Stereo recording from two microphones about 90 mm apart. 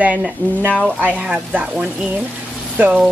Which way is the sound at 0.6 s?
15° left (ahead or behind).